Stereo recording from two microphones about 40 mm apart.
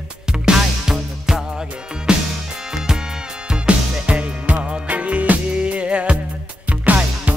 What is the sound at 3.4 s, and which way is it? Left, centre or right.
Music, right.